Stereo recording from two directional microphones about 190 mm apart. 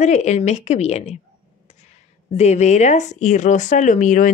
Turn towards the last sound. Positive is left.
turn(degrees=45)  # may be behind; listen again after turning